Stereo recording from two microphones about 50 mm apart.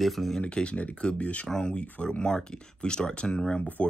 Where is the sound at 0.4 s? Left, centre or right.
Left.